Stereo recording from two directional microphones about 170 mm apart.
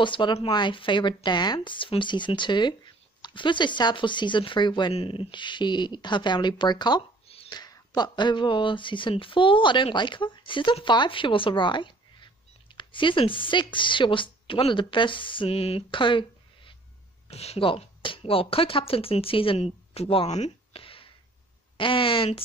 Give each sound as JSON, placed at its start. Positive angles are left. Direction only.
{"t": 0.0, "sound": "speech", "side_deg": 30}